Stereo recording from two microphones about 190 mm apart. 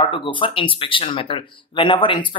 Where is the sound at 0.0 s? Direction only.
25° left (ahead or behind).